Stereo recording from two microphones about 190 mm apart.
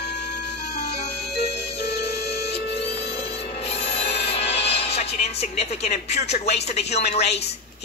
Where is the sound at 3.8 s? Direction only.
30° left (ahead or behind).